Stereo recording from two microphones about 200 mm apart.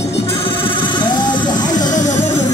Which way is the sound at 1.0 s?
20° left (ahead or behind).